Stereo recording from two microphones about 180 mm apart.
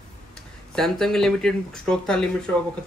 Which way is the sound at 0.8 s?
Centre (ahead or behind).